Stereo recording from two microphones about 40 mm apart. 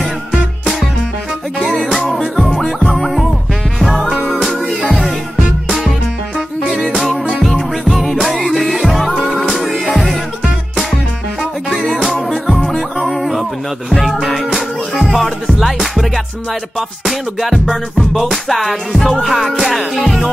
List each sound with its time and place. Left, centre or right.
1.9 s music: centre
7.3 s music: centre
11.7 s music: centre